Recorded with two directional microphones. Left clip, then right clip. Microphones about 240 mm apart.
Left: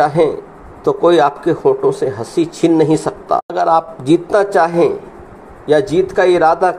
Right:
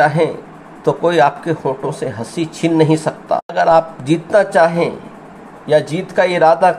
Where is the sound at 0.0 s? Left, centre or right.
Left.